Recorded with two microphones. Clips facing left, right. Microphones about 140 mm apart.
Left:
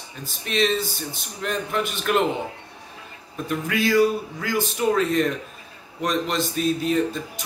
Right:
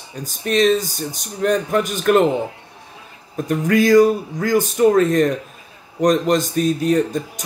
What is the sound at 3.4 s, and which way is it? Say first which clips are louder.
Speech: right 8 dB; 45° right (ahead or behind).